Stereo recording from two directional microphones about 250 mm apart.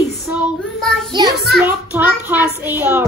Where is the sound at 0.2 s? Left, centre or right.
Centre.